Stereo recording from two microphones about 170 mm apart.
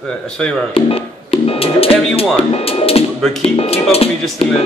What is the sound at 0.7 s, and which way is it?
Speech, 35° left (ahead or behind).